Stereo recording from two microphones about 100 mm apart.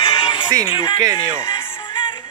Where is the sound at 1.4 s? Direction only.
55° left (ahead or behind).